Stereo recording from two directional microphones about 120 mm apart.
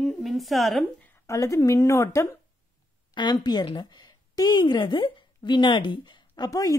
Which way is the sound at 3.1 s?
35° left (ahead or behind).